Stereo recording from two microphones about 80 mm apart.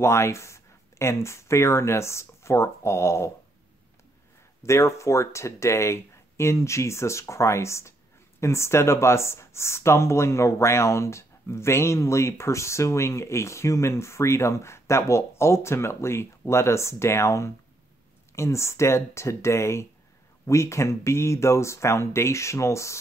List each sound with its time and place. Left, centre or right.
0.0 s speech: left
4.6 s speech: left